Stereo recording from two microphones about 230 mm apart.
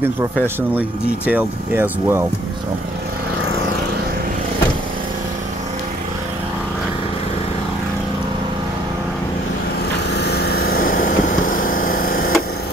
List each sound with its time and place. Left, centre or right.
0.6 s speech: centre
10.1 s vehicle: left